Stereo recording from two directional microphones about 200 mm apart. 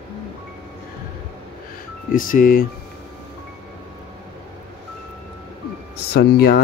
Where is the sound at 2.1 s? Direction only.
45° left (ahead or behind).